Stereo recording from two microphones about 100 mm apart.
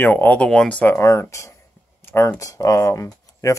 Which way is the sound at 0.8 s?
25° left (ahead or behind).